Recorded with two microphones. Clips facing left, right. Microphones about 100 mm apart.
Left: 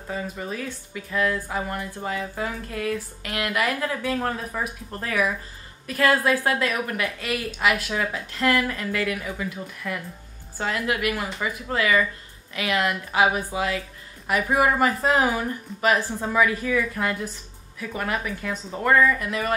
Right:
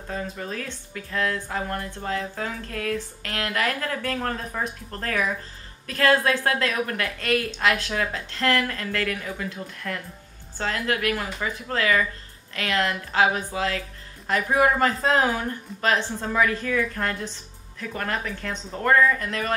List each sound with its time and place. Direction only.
0.1 s speech: 10° left (ahead or behind)